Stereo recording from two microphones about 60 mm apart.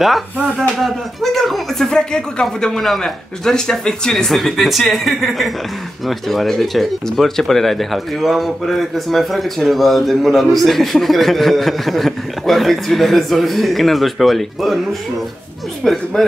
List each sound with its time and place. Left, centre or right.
0.6 s speech: centre